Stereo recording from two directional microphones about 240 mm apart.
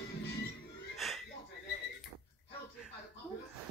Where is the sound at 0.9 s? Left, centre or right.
Centre.